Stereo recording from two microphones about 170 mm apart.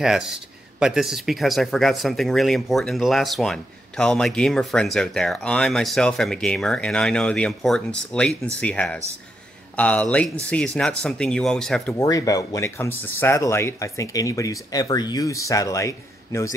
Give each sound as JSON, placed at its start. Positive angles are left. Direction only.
{"t": 0.0, "sound": "speech", "side_deg": -5}
{"t": 12.0, "sound": "speech", "side_deg": 20}